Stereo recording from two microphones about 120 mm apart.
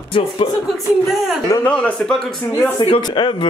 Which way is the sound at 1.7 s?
10° left (ahead or behind).